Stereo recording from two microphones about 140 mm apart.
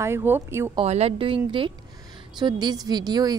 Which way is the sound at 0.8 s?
50° right (ahead or behind).